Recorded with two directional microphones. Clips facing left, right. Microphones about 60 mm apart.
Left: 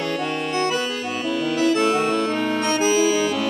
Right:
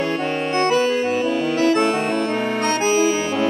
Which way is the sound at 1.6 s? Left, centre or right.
Right.